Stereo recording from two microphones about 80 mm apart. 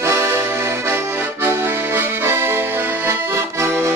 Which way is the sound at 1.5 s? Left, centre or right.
Right.